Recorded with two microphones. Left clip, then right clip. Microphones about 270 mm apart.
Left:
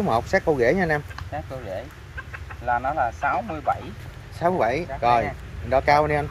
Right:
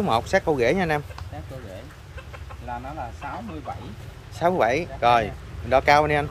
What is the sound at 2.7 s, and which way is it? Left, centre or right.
Speech, left.